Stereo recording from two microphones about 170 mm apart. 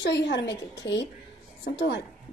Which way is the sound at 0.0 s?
90° left.